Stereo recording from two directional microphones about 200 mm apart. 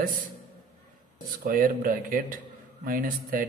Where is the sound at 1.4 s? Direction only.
45° right (ahead or behind).